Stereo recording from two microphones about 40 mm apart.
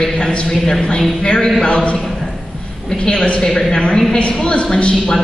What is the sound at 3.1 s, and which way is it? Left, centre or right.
A woman's voice, left.